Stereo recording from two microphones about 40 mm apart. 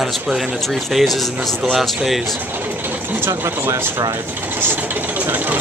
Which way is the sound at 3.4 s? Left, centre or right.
Right.